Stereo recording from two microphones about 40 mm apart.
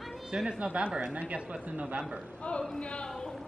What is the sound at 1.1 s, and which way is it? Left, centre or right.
Speech, right.